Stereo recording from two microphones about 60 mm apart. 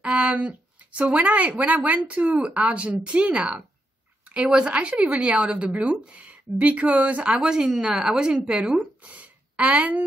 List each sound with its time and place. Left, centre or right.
0.0 s a woman's voice: centre